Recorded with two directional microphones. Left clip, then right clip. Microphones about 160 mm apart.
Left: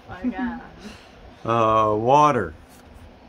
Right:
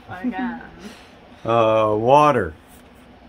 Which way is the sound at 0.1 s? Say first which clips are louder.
Right 2 dB; 35° right (ahead or behind).